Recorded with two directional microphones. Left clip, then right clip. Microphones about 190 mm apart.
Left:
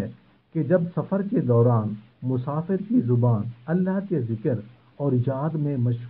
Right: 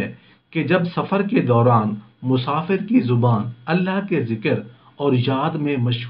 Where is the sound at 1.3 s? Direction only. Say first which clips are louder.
Right 5 dB; 30° left (ahead or behind).